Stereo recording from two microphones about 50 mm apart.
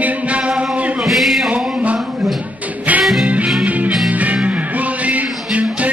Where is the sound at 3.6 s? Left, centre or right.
Right.